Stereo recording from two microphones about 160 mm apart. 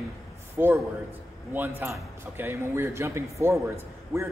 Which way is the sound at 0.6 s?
15° right (ahead or behind).